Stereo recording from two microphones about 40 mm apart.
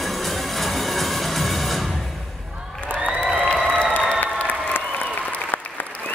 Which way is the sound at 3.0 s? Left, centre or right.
Centre.